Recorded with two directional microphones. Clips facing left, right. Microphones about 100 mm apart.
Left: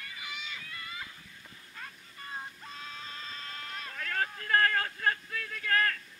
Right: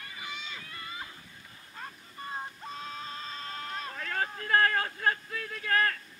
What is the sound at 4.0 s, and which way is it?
Vehicle, 20° right (ahead or behind).